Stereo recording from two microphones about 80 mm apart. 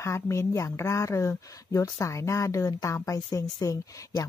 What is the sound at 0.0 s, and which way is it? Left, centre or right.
Speech, left.